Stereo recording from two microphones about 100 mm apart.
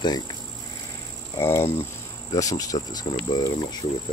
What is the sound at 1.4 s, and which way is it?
Cricket, 25° left (ahead or behind).